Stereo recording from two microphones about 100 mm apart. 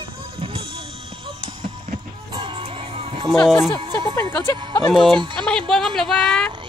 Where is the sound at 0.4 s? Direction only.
70° right (ahead or behind).